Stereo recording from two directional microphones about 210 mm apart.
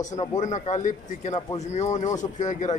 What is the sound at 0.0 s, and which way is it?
A man's voice, 35° left (ahead or behind).